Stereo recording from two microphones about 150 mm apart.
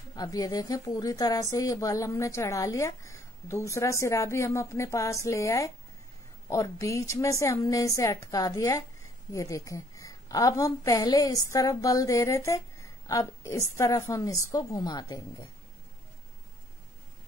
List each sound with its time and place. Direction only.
0.1 s a woman's voice: 25° left (ahead or behind)